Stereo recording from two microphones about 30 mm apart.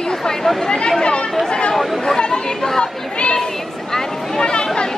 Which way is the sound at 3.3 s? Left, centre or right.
Left.